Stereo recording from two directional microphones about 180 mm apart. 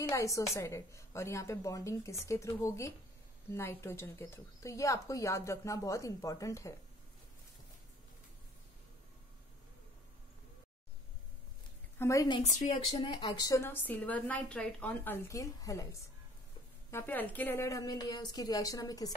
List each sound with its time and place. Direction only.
0.1 s a woman's voice: 15° left (ahead or behind)
12.0 s a woman's voice: 15° left (ahead or behind)
12.4 s speech: 40° left (ahead or behind)
13.0 s a woman's voice: 25° left (ahead or behind)